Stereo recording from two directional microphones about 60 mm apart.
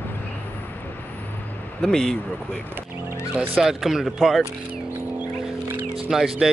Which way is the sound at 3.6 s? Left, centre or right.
Centre.